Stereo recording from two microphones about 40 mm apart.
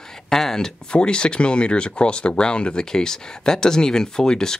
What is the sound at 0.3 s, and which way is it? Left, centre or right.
Speech, centre.